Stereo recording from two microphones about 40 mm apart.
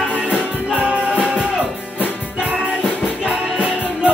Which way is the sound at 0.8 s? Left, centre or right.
Right.